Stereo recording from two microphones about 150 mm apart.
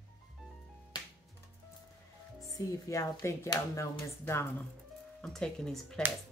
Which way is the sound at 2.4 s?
20° left (ahead or behind).